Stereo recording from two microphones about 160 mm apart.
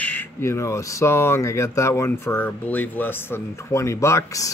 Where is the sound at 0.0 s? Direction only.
10° left (ahead or behind).